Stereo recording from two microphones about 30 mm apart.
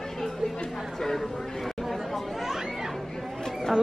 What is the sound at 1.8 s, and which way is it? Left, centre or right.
Chatter, centre.